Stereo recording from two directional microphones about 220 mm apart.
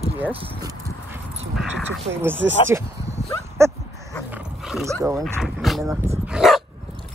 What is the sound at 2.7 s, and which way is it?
Speech, 10° right (ahead or behind).